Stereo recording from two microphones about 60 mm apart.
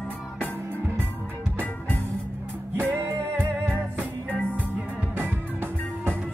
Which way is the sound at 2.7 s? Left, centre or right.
Right.